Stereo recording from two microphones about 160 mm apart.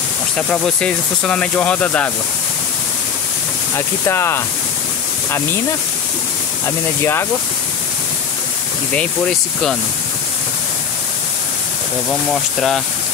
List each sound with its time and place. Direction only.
0.4 s speech: 5° left (ahead or behind)
3.7 s speech: 15° left (ahead or behind)
8.9 s speech: 5° left (ahead or behind)
12.1 s speech: 5° left (ahead or behind)